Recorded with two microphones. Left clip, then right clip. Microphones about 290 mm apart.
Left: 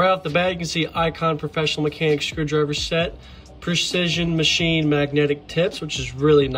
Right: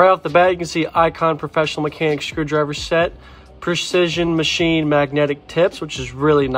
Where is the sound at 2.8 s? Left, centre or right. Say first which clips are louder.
Right 5 dB; right.